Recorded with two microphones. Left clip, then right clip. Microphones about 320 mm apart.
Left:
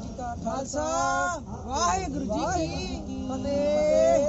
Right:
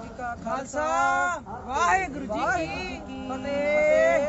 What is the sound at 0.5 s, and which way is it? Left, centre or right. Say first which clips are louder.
Speech: right 3 dB; centre.